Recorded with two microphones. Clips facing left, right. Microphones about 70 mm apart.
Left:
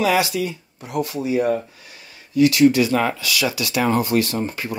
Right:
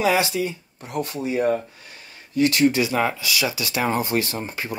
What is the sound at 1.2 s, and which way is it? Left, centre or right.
Speech, right.